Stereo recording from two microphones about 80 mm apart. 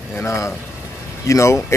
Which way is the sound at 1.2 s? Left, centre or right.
Left.